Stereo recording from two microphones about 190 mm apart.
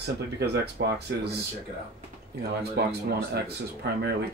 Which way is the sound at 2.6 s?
60° right (ahead or behind).